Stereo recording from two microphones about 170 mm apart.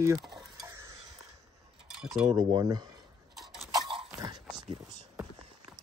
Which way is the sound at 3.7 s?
30° right (ahead or behind).